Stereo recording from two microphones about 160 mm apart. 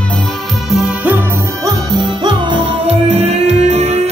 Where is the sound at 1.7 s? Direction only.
25° right (ahead or behind).